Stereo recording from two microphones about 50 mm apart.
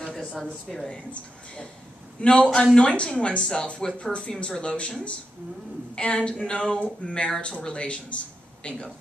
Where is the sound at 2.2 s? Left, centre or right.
Left.